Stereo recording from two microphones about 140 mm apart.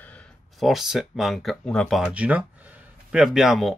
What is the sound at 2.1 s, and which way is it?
Speech, 10° right (ahead or behind).